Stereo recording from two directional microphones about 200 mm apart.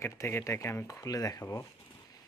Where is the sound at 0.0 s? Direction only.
15° left (ahead or behind).